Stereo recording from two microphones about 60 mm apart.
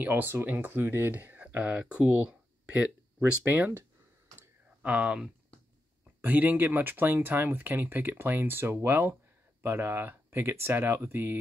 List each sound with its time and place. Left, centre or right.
0.0 s speech: right
3.4 s speech: right
4.8 s speech: centre
6.2 s speech: right